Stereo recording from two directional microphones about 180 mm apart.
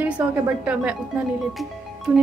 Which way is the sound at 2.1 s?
5° right (ahead or behind).